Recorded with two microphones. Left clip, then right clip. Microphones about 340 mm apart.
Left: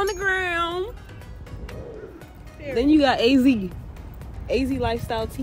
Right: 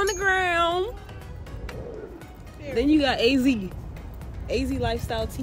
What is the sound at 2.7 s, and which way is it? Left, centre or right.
Speech, centre.